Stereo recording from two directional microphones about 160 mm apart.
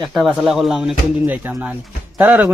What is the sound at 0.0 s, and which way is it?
Speech, centre (ahead or behind).